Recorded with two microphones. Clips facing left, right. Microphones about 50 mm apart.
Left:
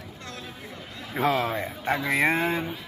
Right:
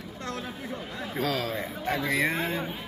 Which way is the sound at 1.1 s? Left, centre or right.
Left.